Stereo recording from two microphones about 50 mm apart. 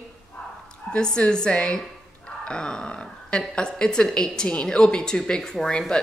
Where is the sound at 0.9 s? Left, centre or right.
Centre.